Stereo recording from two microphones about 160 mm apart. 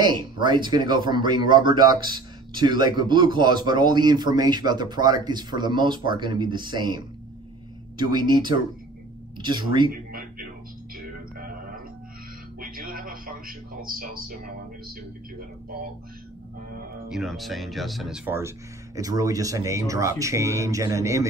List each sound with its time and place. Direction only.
0.0 s speech: 30° right (ahead or behind)
8.0 s speech: 25° right (ahead or behind)
11.3 s music: 60° right (ahead or behind)
12.5 s a sound: 65° right (ahead or behind)
17.1 s speech: centre (ahead or behind)
18.9 s speech: 20° right (ahead or behind)